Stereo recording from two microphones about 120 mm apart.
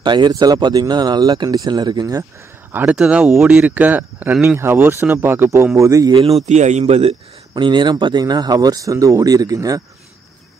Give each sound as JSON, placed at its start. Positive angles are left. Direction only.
{"t": 0.0, "sound": "speech", "side_deg": -40}
{"t": 2.7, "sound": "a man's voice", "side_deg": -15}
{"t": 6.1, "sound": "speech", "side_deg": -55}
{"t": 7.5, "sound": "speech", "side_deg": -40}